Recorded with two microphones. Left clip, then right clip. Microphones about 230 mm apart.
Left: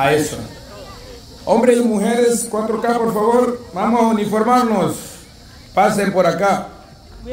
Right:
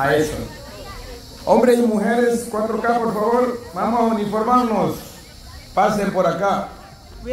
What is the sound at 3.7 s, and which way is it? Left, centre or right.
A man's voice, left.